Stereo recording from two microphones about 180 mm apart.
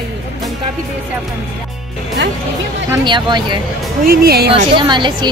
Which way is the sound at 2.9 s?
25° right (ahead or behind).